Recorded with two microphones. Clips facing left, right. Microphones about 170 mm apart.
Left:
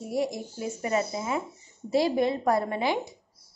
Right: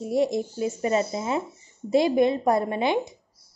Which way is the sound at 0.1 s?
20° right (ahead or behind).